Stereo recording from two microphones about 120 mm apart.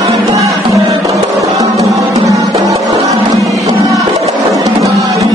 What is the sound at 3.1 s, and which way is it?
Wild animals, 25° right (ahead or behind).